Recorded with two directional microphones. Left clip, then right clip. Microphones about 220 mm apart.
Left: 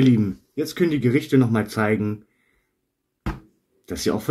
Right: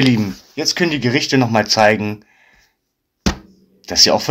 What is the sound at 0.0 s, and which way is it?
Speech, 15° left (ahead or behind).